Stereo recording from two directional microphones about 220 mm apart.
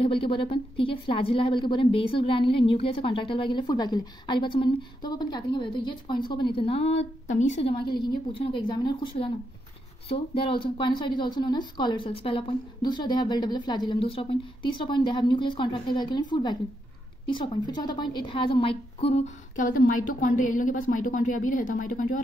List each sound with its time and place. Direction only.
0.0 s a woman's voice: 25° left (ahead or behind); by 22.2 s 40° left (ahead or behind)